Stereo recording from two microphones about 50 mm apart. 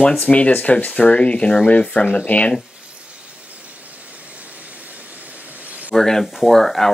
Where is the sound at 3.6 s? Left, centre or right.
Right.